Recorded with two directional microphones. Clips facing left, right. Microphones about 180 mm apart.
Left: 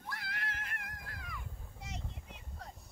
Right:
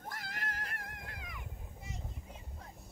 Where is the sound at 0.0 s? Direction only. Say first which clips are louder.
Even; 45° right (ahead or behind); by 1.4 s 20° right (ahead or behind).